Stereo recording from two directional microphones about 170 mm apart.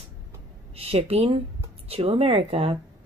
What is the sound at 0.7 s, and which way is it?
Speech, 35° right (ahead or behind).